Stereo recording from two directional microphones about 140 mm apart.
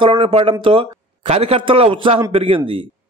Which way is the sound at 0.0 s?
40° right (ahead or behind).